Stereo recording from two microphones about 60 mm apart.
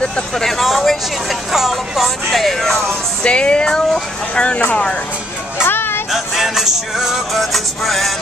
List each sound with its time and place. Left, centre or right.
0.0 s a sound: centre
3.3 s music: centre
4.4 s speech: left
5.6 s music: left
6.1 s music: centre